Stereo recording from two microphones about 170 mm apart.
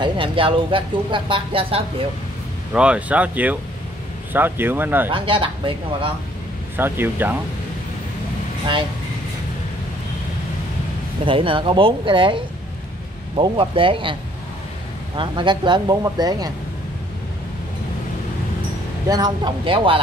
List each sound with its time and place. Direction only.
0.0 s speech: 30° right (ahead or behind)
2.7 s speech: 5° right (ahead or behind)
5.1 s speech: 30° right (ahead or behind)
6.8 s speech: 10° right (ahead or behind)
11.2 s speech: 30° right (ahead or behind)
13.4 s speech: 30° right (ahead or behind)
15.1 s speech: 30° right (ahead or behind)
19.0 s speech: 25° right (ahead or behind)